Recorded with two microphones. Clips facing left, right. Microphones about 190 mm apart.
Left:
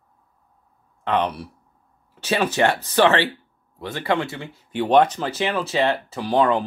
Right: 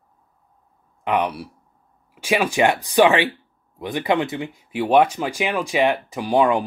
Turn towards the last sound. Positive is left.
turn(degrees=-10)  # may be behind; listen again after turning